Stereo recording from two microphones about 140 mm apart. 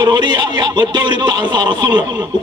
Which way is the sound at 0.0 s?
30° right (ahead or behind).